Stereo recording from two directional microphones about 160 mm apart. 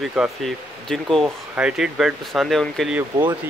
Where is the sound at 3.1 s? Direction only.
25° right (ahead or behind).